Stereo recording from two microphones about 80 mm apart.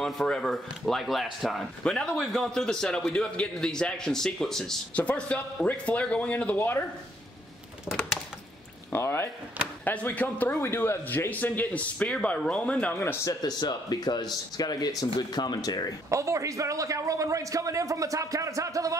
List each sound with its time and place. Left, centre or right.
0.0 s speech: centre
4.9 s speech: centre
8.9 s speech: left
9.8 s a man's voice: left
13.2 s speech: left
16.1 s a man's voice: right